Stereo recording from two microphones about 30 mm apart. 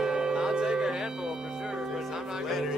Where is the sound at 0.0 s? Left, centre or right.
Right.